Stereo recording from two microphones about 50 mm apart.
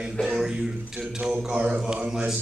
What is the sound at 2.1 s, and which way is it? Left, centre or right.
Speech, centre.